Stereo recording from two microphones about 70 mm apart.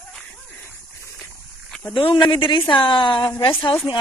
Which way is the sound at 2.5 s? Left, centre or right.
Left.